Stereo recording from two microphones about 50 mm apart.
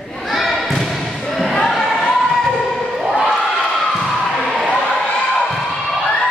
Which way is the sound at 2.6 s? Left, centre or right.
Centre.